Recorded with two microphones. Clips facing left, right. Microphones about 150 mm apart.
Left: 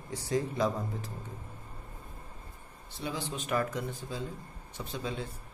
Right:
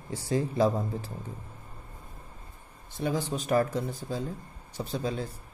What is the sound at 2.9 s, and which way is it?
Speech, 45° right (ahead or behind).